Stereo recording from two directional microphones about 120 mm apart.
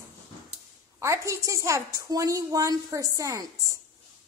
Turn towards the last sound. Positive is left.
turn(degrees=-25)  # may be behind; listen again after turning